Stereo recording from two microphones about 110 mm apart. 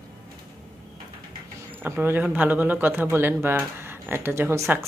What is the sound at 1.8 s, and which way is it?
Speech, 20° right (ahead or behind).